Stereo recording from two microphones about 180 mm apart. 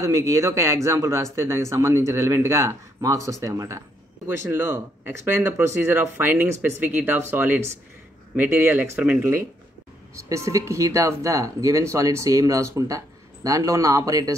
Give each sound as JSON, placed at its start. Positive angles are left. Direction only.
{"t": 0.0, "sound": "speech", "side_deg": -15}